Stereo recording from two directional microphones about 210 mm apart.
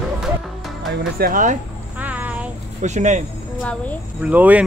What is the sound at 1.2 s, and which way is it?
Speech, 40° right (ahead or behind).